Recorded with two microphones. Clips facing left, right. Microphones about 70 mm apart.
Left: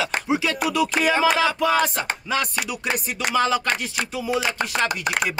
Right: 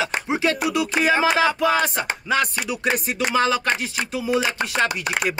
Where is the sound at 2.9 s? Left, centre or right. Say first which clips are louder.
Right 3 dB; right.